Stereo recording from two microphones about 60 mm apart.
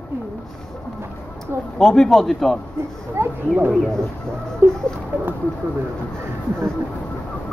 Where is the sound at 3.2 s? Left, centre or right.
Right.